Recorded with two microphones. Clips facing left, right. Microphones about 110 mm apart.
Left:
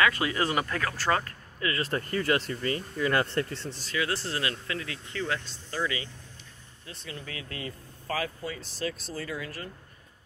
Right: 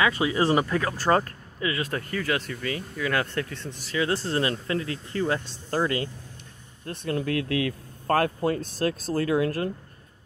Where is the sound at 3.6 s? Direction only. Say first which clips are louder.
Right 1 dB; 50° right (ahead or behind).